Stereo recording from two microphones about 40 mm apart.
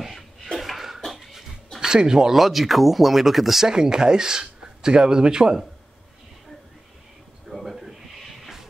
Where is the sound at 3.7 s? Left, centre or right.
Centre.